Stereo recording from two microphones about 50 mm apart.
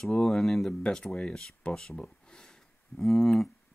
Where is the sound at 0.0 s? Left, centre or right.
Centre.